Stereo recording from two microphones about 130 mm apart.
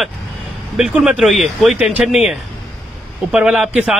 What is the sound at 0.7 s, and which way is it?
A man's voice, 5° right (ahead or behind).